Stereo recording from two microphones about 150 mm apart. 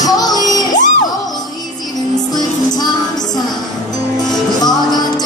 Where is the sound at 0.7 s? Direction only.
60° left (ahead or behind).